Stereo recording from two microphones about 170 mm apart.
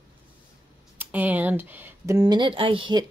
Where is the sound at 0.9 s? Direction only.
10° right (ahead or behind).